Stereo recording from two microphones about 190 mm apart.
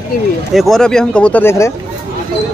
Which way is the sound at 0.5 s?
Centre (ahead or behind).